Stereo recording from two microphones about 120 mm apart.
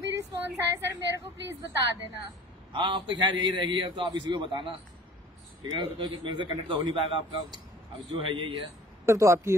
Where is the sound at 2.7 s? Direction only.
45° right (ahead or behind).